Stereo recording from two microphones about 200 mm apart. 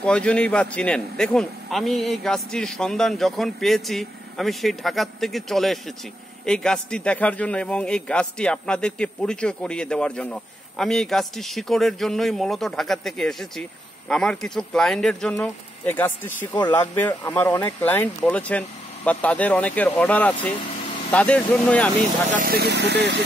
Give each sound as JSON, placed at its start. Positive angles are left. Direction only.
{"t": 0.0, "sound": "a man's voice", "side_deg": 5}
{"t": 22.3, "sound": "speech", "side_deg": -45}